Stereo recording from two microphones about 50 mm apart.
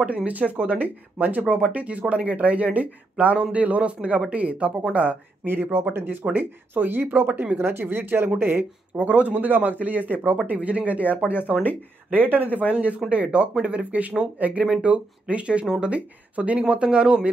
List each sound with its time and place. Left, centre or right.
0.3 s speech: right
5.5 s speech: right
8.9 s speech: right
12.1 s speech: right; by 17.3 s centre